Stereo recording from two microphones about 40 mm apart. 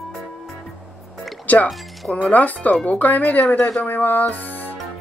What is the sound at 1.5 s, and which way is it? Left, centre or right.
Speech, left.